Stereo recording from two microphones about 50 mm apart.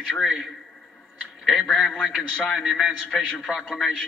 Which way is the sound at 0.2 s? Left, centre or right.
Centre.